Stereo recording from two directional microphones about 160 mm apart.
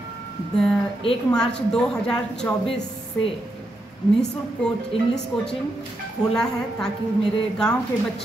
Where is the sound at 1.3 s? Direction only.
5° left (ahead or behind).